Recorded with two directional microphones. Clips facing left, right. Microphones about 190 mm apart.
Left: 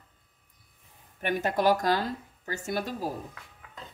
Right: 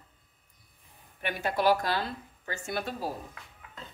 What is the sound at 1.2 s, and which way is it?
Speech, 45° left (ahead or behind).